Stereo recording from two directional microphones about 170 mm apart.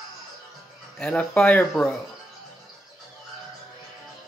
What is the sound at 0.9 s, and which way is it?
Speech, 5° left (ahead or behind).